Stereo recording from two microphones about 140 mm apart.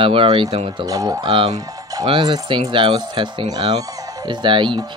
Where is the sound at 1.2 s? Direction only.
35° right (ahead or behind).